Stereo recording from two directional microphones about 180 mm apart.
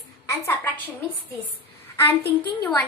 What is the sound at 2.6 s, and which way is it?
Speech, 10° left (ahead or behind).